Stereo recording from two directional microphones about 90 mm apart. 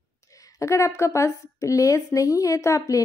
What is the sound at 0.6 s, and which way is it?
A woman's voice, 35° left (ahead or behind).